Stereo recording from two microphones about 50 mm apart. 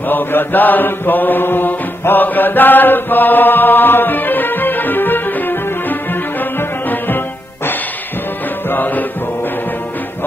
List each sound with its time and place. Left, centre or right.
0.1 s mantra: left
8.6 s music: left